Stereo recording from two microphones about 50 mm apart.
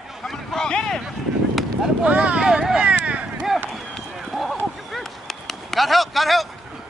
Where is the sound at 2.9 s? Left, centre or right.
Right.